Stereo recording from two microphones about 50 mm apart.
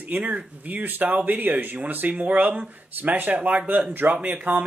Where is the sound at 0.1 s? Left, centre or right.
Right.